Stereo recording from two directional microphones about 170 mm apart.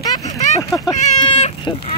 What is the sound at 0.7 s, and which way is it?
Speech, centre (ahead or behind).